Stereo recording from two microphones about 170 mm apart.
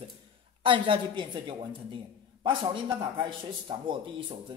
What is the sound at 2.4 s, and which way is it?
Speech, 30° right (ahead or behind).